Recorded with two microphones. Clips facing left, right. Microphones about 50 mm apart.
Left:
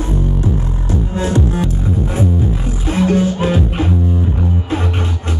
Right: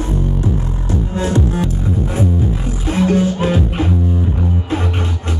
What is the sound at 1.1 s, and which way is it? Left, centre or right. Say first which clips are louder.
Music: even; left.